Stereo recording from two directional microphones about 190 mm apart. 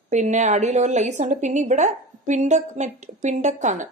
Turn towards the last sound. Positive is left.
turn(degrees=-40)  # may be behind; listen again after turning